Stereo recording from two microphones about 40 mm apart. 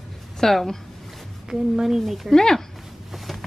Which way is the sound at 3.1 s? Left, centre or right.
Centre.